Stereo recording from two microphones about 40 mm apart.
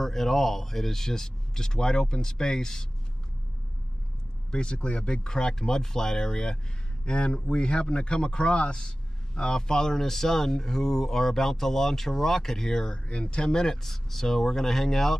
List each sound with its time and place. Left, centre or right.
0.0 s a man's voice: centre
4.5 s a man's voice: left; by 15.1 s centre